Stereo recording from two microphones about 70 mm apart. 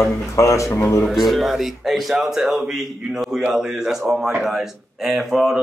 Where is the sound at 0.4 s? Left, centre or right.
Left.